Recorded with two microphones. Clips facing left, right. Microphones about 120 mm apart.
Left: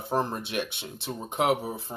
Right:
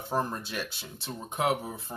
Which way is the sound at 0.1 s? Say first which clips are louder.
Left 3 dB; 25° left (ahead or behind).